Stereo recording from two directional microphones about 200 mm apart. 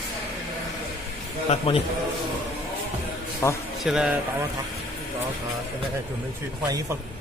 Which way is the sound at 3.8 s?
Centre (ahead or behind).